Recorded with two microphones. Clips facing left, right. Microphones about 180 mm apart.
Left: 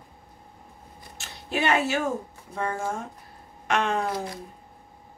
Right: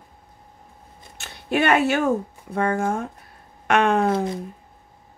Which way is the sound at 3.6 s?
60° right (ahead or behind).